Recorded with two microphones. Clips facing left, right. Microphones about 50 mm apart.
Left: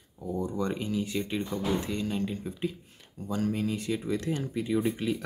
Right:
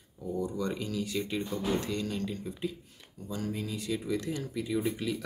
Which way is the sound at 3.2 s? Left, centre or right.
Left.